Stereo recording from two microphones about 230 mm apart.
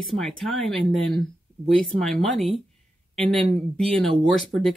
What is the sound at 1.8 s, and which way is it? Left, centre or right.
Speech, centre.